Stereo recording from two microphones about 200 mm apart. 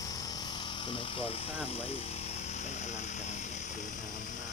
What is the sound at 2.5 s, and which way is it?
Vehicle, 35° left (ahead or behind).